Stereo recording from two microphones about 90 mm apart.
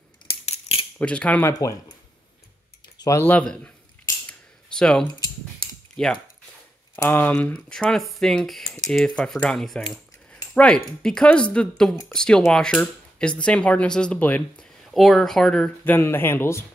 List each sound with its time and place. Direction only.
0.9 s speech: 15° left (ahead or behind)
1.5 s speech: 40° left (ahead or behind)
3.2 s speech: 20° left (ahead or behind)
4.3 s a sound: 10° left (ahead or behind)
6.0 s speech: 5° left (ahead or behind)
7.0 s speech: 20° left (ahead or behind)
14.9 s speech: centre (ahead or behind)
15.8 s speech: 25° left (ahead or behind)